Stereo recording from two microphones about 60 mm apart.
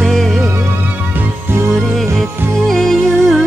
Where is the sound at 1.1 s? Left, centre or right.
Right.